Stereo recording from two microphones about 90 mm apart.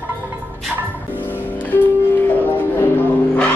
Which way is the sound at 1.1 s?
20° left (ahead or behind).